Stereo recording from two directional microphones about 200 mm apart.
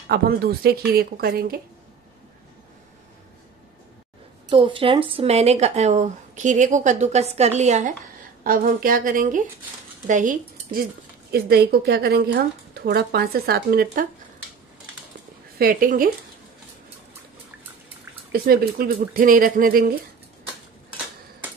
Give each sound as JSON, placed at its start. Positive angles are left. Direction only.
{"t": 0.1, "sound": "speech", "side_deg": -50}
{"t": 4.5, "sound": "a woman's voice", "side_deg": -25}
{"t": 8.5, "sound": "speech", "side_deg": -45}
{"t": 15.6, "sound": "speech", "side_deg": -45}
{"t": 18.3, "sound": "speech", "side_deg": -50}